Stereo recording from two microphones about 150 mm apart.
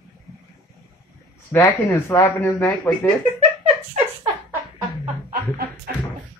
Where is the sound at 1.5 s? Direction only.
15° left (ahead or behind).